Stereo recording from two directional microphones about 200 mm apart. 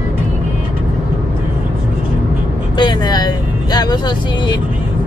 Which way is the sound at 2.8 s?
20° left (ahead or behind).